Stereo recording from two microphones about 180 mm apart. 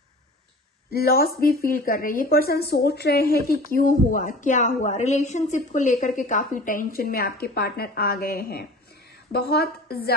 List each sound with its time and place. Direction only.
0.8 s a woman's voice: 55° left (ahead or behind)
3.7 s a woman's voice: 50° left (ahead or behind)